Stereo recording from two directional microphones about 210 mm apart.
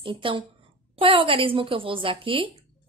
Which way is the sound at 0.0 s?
25° right (ahead or behind).